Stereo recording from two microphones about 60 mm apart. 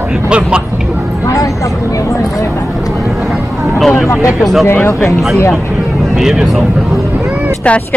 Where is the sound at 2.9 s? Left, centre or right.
Centre.